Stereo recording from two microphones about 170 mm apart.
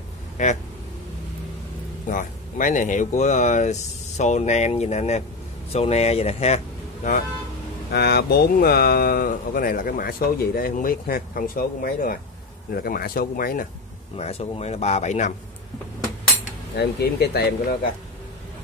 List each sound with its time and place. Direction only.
0.4 s speech: 45° left (ahead or behind)
2.0 s speech: 50° left (ahead or behind)
7.9 s speech: 70° left (ahead or behind)
14.1 s speech: 35° left (ahead or behind)
16.7 s speech: 70° left (ahead or behind)